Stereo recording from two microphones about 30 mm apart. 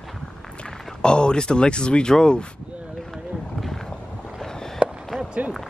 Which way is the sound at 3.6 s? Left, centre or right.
Centre.